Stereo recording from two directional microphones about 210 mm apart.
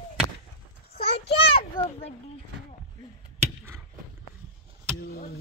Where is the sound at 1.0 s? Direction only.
25° left (ahead or behind).